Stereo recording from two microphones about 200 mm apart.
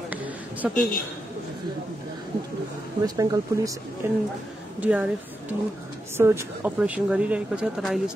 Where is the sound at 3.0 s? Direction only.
15° right (ahead or behind).